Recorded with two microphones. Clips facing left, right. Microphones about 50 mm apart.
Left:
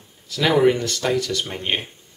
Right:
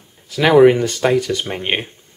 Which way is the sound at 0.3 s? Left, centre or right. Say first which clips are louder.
Right 7 dB; right.